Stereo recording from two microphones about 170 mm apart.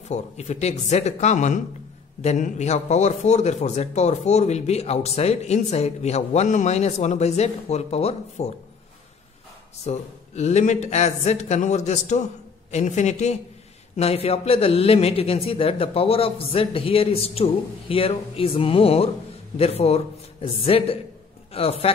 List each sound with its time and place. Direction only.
0.1 s speech: 40° left (ahead or behind)
9.8 s speech: 40° left (ahead or behind)